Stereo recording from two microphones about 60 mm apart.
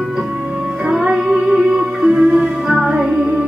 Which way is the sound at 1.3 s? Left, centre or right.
Centre.